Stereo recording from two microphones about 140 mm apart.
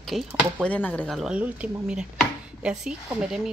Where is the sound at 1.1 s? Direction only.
5° right (ahead or behind).